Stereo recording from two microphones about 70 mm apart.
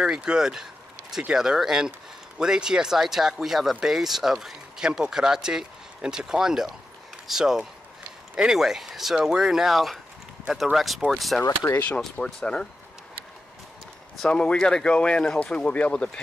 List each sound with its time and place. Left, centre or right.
0.0 s speech: centre
11.7 s speech: left
12.0 s speech: centre
14.1 s speech: centre